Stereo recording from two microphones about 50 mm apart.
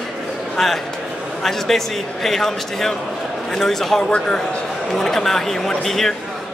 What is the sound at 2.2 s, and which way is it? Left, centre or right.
A man's voice, centre.